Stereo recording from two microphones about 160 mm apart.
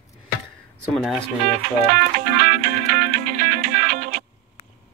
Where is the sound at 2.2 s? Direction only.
60° right (ahead or behind).